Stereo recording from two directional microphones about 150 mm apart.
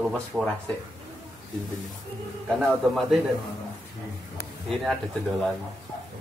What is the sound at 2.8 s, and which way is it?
Speech, centre (ahead or behind).